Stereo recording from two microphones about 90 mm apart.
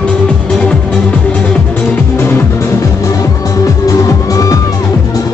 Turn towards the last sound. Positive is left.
turn(degrees=40)  # may be behind; listen again after turning